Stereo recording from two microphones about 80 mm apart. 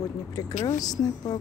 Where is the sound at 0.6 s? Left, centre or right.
Left.